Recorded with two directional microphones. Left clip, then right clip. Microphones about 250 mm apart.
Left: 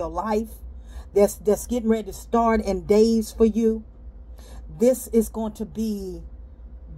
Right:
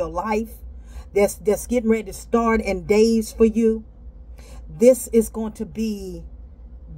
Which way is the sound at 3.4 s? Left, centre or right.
Centre.